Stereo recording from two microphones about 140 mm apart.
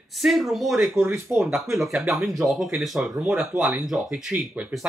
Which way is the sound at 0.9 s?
15° right (ahead or behind).